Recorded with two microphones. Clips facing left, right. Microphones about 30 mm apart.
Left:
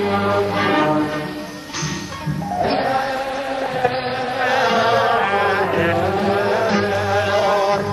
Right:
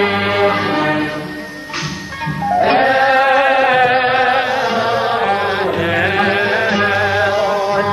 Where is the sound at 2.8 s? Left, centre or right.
Right.